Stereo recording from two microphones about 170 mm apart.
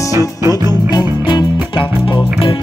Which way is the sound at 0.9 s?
25° left (ahead or behind).